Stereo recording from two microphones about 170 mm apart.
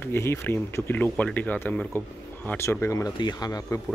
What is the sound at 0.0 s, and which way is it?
Speech, 15° left (ahead or behind).